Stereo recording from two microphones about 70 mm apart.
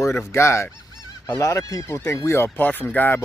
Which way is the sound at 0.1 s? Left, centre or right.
Left.